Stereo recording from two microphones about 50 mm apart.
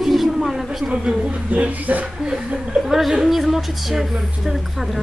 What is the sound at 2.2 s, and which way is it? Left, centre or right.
Speech, centre.